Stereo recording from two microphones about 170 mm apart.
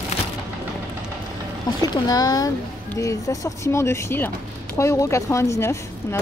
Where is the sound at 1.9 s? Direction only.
20° left (ahead or behind).